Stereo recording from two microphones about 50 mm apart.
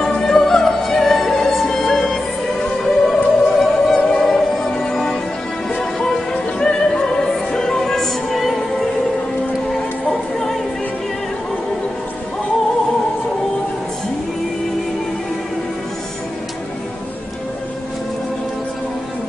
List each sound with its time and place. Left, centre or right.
0.0 s opera: centre
2.8 s music: centre
9.7 s music: centre